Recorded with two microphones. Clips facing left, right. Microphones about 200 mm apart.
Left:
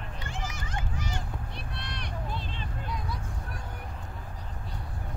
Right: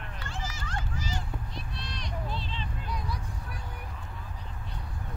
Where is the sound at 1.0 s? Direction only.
60° left (ahead or behind).